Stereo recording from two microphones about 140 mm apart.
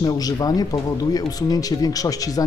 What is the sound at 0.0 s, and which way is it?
Speech, 30° left (ahead or behind).